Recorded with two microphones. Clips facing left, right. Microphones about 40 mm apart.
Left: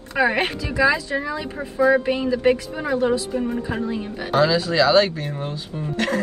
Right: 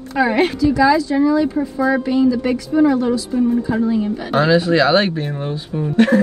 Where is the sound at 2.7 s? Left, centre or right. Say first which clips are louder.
Right 6 dB; left.